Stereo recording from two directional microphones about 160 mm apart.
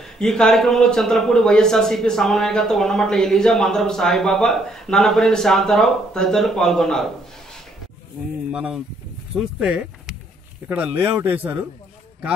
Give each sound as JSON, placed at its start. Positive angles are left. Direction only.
{"t": 0.2, "sound": "speech", "side_deg": 5}
{"t": 8.5, "sound": "a man's voice", "side_deg": -5}